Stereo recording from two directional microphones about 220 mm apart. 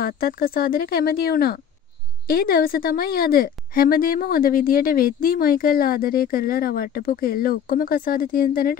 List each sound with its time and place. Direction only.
0.0 s a woman's voice: 40° left (ahead or behind)